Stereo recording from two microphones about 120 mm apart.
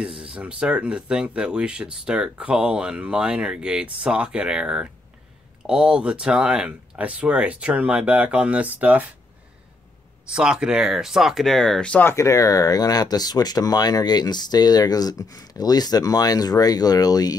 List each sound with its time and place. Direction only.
0.0 s speech: 10° right (ahead or behind)
10.2 s speech: 5° right (ahead or behind); by 12.1 s 10° left (ahead or behind)
12.1 s speech: 25° left (ahead or behind)